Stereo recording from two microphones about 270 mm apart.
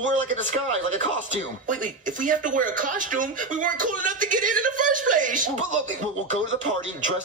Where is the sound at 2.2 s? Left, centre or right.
Right.